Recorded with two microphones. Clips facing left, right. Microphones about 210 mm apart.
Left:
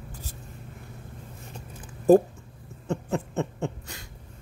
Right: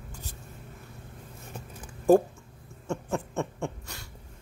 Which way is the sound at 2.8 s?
20° left (ahead or behind).